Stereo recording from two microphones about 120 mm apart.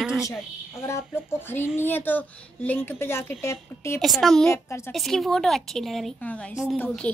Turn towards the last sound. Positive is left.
turn(degrees=-5)  # may be behind; listen again after turning